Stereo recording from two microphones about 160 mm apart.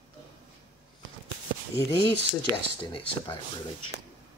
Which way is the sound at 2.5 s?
25° right (ahead or behind).